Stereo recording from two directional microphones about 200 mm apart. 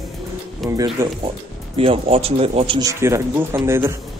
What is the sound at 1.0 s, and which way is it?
Speech, 10° right (ahead or behind).